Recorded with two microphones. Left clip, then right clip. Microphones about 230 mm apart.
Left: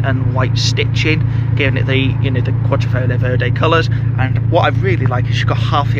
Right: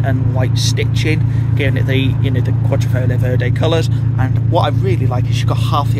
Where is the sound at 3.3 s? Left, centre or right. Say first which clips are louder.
Left 3 dB; centre.